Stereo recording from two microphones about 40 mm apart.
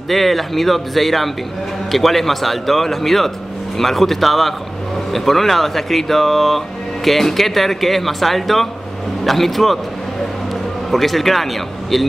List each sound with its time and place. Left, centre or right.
0.1 s speech: centre
10.9 s speech: centre